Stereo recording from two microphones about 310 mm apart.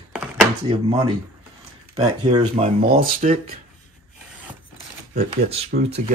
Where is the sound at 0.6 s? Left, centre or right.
Centre.